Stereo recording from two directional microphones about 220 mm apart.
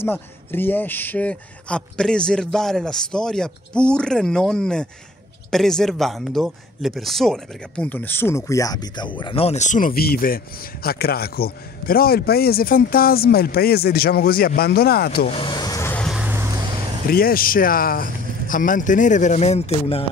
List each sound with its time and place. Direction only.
0.0 s speech: 10° left (ahead or behind); by 15.2 s 45° left (ahead or behind)
15.2 s a sound: 25° left (ahead or behind); by 16.4 s 5° right (ahead or behind)
17.1 s speech: 40° left (ahead or behind)